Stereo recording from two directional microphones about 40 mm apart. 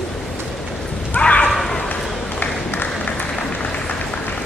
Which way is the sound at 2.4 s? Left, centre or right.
Left.